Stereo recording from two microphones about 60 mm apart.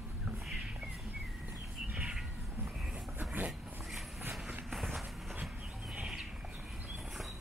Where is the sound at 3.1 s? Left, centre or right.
Right.